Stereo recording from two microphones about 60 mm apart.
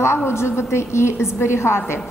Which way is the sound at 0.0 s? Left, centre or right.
Left.